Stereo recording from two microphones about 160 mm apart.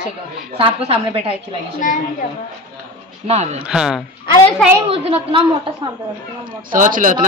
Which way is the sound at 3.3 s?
45° right (ahead or behind).